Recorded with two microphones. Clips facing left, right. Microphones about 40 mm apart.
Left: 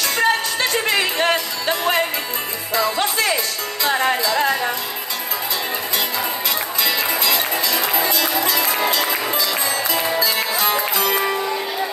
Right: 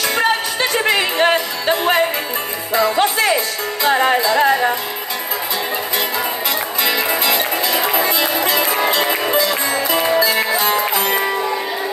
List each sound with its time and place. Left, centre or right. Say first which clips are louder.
0.1 s music: even; right
3.8 s speech: right 4 dB; right
6.8 s music: right 3 dB; right